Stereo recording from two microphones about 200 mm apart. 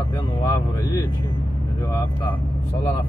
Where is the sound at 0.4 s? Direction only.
15° left (ahead or behind).